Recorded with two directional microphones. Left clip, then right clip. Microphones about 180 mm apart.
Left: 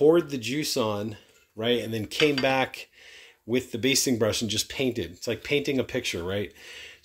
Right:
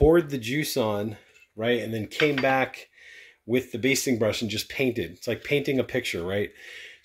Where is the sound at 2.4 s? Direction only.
15° left (ahead or behind).